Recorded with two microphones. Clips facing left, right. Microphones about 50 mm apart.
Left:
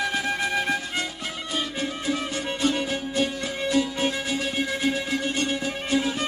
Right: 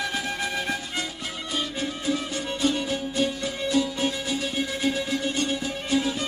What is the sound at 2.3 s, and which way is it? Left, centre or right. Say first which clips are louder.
Music: left 1 dB; left.